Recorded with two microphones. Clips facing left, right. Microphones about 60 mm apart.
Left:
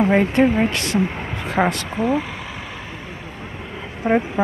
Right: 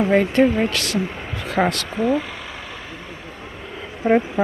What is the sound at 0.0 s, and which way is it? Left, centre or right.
Speech, centre.